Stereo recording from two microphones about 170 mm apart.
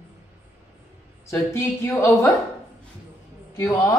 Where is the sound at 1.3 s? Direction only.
15° left (ahead or behind).